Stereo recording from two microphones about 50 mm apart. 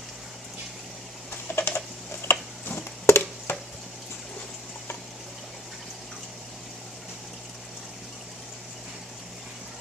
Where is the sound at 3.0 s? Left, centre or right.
Left.